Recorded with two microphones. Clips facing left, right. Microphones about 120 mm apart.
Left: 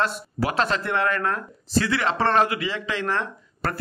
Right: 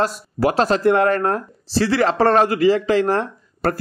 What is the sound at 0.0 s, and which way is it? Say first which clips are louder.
A man's voice: right 6 dB; 40° right (ahead or behind).